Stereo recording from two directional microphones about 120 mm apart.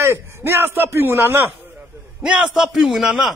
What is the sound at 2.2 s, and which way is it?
A man's voice, 5° right (ahead or behind).